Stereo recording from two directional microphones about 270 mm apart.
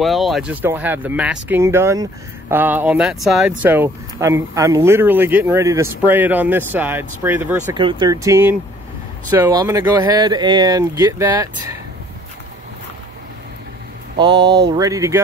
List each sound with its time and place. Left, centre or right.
0.0 s speech: centre
14.1 s speech: centre